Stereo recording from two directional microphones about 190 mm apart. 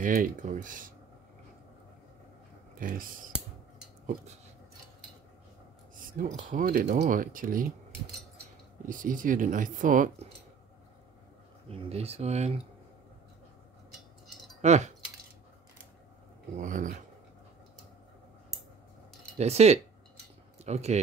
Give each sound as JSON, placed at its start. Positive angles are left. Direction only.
{"t": 0.0, "sound": "speech", "side_deg": -45}
{"t": 2.7, "sound": "speech", "side_deg": -45}
{"t": 6.1, "sound": "speech", "side_deg": -45}
{"t": 8.8, "sound": "speech", "side_deg": -45}
{"t": 11.7, "sound": "speech", "side_deg": -35}
{"t": 14.6, "sound": "speech", "side_deg": -35}
{"t": 16.5, "sound": "speech", "side_deg": -45}
{"t": 19.3, "sound": "speech", "side_deg": -35}